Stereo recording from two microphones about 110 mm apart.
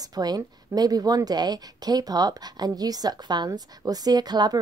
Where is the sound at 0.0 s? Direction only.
35° right (ahead or behind).